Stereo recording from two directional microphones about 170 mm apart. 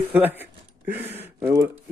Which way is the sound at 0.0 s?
10° right (ahead or behind).